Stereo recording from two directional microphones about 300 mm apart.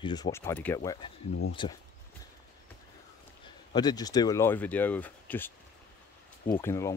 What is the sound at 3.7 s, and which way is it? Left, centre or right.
Speech, centre.